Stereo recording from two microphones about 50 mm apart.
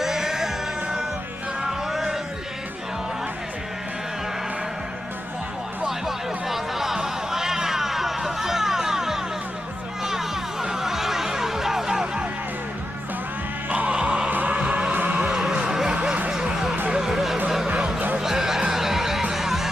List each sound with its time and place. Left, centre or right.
0.0 s music: centre
5.9 s chatter: centre
10.0 s music: centre
13.7 s music: right
15.1 s music: centre
16.3 s a sound: centre
16.9 s music: centre
17.6 s music: right
18.1 s music: centre